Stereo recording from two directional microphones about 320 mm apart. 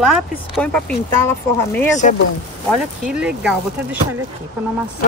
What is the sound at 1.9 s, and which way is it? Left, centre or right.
Speech, left.